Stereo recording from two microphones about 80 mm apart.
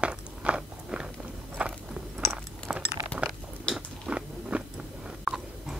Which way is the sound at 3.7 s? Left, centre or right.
Centre.